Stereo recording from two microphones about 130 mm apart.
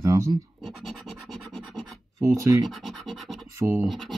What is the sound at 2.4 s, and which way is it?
Speech, 25° right (ahead or behind).